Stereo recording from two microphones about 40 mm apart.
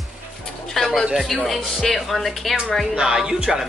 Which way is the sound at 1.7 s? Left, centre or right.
Centre.